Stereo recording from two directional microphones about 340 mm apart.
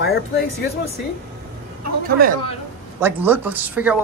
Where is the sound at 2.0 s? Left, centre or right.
Right.